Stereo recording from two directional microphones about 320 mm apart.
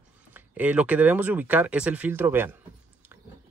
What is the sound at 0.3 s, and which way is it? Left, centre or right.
Speech, centre.